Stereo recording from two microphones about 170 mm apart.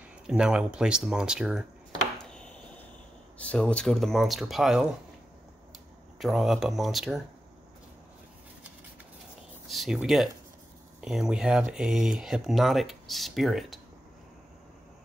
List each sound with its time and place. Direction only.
0.3 s speech: 5° right (ahead or behind)
2.3 s a sound: 5° left (ahead or behind)
3.3 s speech: 5° left (ahead or behind)
6.1 s speech: centre (ahead or behind)
9.7 s a sound: centre (ahead or behind)
9.9 s speech: centre (ahead or behind)